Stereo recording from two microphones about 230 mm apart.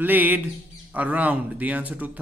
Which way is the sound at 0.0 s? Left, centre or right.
Centre.